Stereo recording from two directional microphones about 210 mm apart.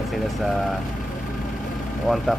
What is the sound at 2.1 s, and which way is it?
Speech, centre (ahead or behind).